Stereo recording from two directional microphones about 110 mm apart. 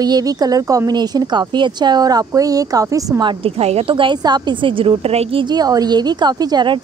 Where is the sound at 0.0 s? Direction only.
35° right (ahead or behind).